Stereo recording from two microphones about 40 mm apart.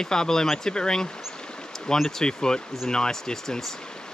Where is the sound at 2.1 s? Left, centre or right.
Centre.